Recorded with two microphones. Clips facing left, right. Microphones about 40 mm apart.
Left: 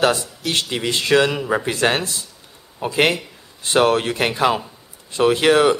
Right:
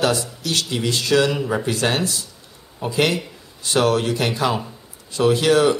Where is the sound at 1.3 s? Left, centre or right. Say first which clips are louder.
Left 2 dB; centre.